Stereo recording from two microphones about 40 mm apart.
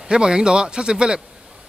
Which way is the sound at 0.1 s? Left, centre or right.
Right.